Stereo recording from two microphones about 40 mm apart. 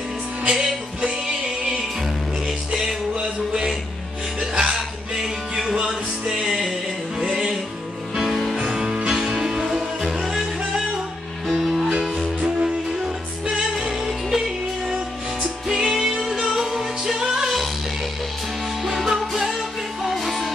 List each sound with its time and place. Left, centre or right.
0.5 s music: centre
4.4 s music: centre
5.8 s music: right
6.4 s music: centre
13.7 s music: centre
15.7 s music: centre
18.9 s music: centre